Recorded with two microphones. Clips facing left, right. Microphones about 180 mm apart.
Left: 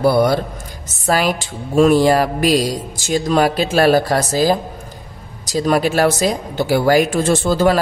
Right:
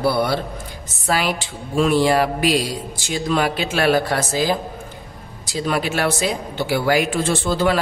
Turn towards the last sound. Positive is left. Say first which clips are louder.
# left 4 dB
turn(degrees=45)  # may be behind; listen again after turning